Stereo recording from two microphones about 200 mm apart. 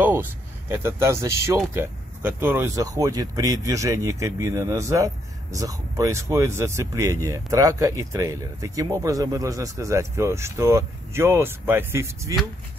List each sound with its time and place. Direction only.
0.0 s speech: 10° right (ahead or behind)